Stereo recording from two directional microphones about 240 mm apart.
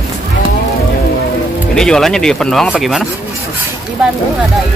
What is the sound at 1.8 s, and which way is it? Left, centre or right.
Speech, centre.